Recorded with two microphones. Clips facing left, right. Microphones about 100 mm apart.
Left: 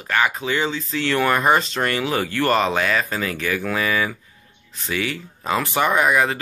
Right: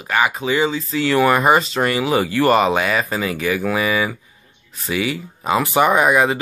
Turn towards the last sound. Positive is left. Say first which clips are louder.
# right 3 dB
turn(degrees=-20)  # may be behind; listen again after turning